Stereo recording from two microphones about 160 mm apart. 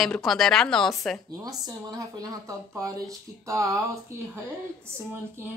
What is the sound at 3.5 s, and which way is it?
Speech, 20° right (ahead or behind).